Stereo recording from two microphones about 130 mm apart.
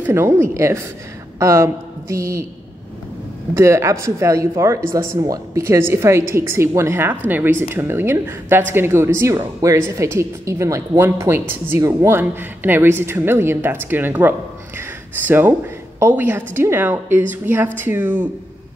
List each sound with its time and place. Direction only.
0.0 s a woman's voice: 20° right (ahead or behind)
3.5 s a woman's voice: 20° right (ahead or behind)